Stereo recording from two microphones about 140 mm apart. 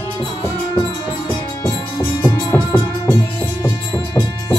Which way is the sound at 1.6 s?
20° left (ahead or behind).